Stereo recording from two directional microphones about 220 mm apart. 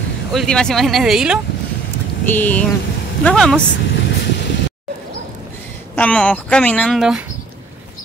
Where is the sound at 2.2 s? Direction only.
10° left (ahead or behind).